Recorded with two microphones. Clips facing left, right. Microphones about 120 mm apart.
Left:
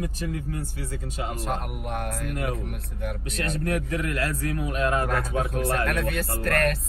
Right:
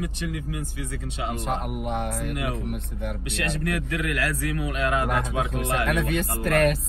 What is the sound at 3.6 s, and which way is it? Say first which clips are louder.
A man's voice: left 3 dB; 35° left (ahead or behind).